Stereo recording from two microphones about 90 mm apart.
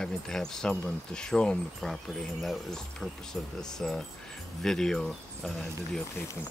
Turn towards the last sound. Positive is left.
turn(degrees=5)  # may be behind; listen again after turning